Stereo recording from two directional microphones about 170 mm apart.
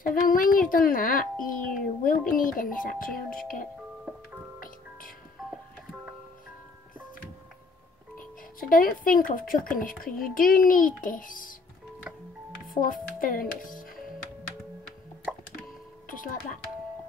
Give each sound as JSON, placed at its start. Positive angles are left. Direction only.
{"t": 0.0, "sound": "a child's voice", "side_deg": 55}
{"t": 4.6, "sound": "music", "side_deg": 55}
{"t": 8.2, "sound": "music", "side_deg": 55}
{"t": 9.3, "sound": "a child's voice", "side_deg": 55}
{"t": 12.6, "sound": "speech", "side_deg": 55}
{"t": 15.3, "sound": "drip", "side_deg": -5}
{"t": 16.1, "sound": "speech", "side_deg": 55}